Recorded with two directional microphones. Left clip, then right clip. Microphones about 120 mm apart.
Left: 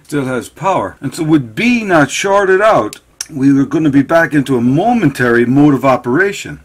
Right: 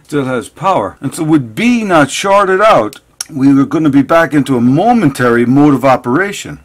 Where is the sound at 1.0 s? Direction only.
35° right (ahead or behind).